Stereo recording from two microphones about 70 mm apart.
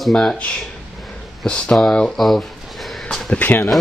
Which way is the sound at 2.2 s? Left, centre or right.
Centre.